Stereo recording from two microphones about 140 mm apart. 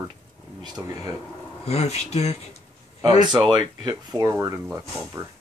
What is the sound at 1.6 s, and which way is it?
Speech, 50° left (ahead or behind).